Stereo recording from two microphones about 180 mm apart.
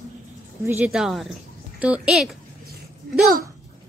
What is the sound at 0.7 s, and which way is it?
Speech, 10° right (ahead or behind).